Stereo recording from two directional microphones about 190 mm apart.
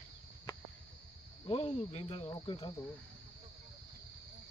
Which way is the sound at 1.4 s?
30° left (ahead or behind).